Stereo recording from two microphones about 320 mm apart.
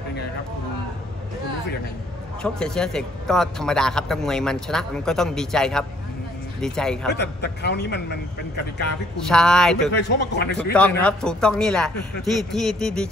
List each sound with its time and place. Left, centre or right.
2.4 s a man's voice: centre
7.2 s speech: left
9.3 s a man's voice: centre
9.9 s speech: left
10.6 s a man's voice: centre